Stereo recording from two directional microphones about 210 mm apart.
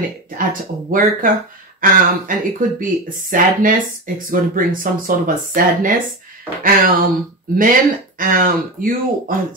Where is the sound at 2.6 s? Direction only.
40° right (ahead or behind).